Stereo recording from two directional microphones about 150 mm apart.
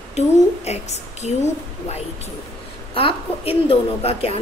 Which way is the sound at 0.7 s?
50° left (ahead or behind).